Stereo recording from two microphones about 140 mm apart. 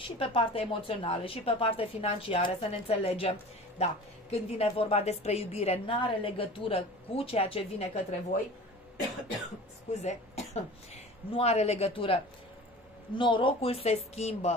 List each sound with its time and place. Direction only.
0.0 s a woman's voice: 40° left (ahead or behind)
10.0 s a woman's voice: 50° left (ahead or behind)